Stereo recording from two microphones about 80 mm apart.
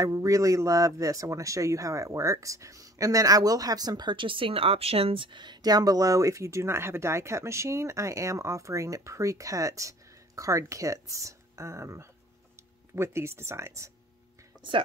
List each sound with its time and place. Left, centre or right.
0.0 s speech: right